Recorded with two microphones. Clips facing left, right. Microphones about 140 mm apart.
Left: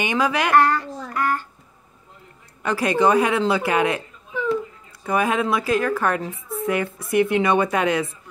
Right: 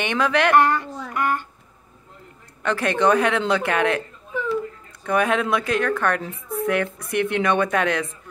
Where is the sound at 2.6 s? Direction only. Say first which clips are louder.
Left 1 dB; 10° left (ahead or behind).